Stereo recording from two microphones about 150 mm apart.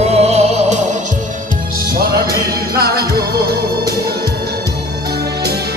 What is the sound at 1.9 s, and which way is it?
Music, 85° right.